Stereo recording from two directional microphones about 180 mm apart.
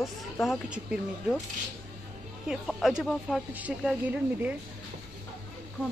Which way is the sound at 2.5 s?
Centre (ahead or behind).